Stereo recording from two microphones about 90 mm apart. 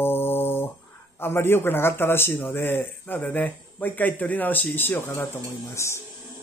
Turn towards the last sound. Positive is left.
turn(degrees=30)  # may be behind; listen again after turning